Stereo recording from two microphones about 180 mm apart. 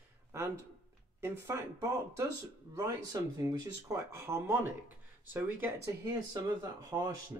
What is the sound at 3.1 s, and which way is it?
Speech, 20° right (ahead or behind).